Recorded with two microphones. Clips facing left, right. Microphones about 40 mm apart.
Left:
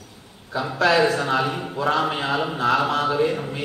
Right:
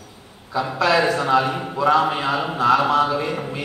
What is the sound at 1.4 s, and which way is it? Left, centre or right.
Speech, centre.